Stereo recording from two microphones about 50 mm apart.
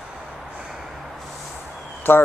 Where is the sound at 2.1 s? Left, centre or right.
Left.